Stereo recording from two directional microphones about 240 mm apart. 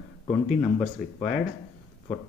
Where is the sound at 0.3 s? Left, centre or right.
Centre.